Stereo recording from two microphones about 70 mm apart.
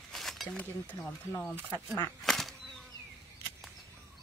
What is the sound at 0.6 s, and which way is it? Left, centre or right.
Speech, left.